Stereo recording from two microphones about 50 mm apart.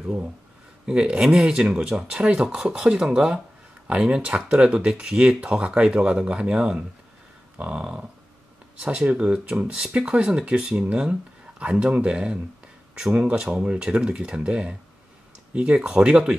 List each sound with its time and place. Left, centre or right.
0.8 s speech: centre
7.5 s speech: right